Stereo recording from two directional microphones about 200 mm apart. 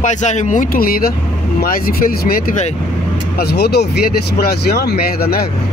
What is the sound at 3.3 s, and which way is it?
Speech, 55° left (ahead or behind).